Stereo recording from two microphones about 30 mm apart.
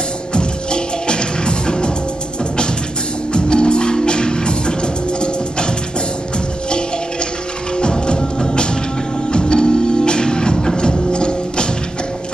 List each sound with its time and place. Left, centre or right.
0.3 s music: left
3.3 s music: left
7.7 s music: left
9.3 s music: left